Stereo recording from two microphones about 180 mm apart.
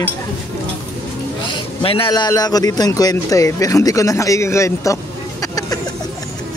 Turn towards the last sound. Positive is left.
turn(degrees=20)  # may be behind; listen again after turning